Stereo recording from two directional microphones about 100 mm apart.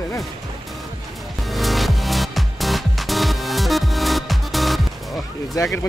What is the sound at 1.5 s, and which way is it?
Music, centre (ahead or behind).